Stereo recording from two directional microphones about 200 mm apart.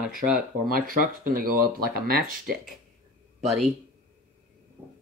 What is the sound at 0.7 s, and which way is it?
Speech, 45° right (ahead or behind).